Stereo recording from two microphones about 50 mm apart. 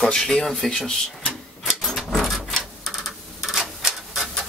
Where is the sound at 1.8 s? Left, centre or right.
Centre.